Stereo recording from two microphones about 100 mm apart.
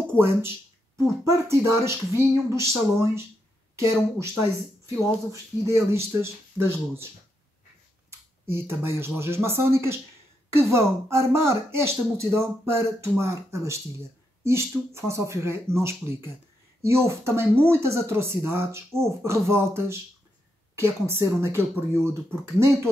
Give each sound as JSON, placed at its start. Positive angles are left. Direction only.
{"t": 0.2, "sound": "speech", "side_deg": -25}
{"t": 5.3, "sound": "speech", "side_deg": -25}
{"t": 8.5, "sound": "speech", "side_deg": -25}